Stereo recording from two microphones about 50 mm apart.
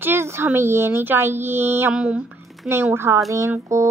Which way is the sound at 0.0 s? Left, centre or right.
Right.